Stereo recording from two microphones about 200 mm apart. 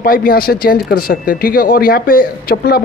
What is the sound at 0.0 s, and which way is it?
Speech, 45° left (ahead or behind).